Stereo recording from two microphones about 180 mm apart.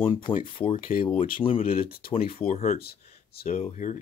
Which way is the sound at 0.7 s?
50° left (ahead or behind).